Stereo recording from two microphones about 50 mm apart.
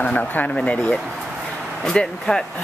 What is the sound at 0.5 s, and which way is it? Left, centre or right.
Speech, left.